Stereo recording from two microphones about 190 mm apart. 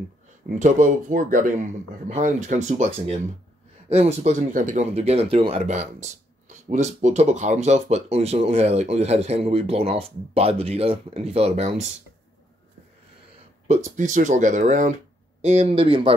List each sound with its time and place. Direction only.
0.5 s speech: 40° right (ahead or behind)
13.9 s speech: 40° right (ahead or behind)